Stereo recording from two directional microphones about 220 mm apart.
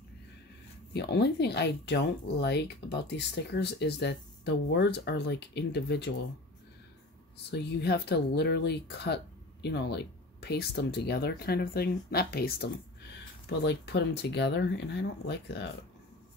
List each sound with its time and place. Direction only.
0.9 s speech: 50° left (ahead or behind)
7.5 s speech: 50° left (ahead or behind)